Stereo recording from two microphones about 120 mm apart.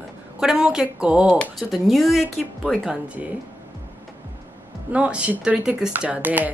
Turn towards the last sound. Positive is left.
turn(degrees=-15)  # may be behind; listen again after turning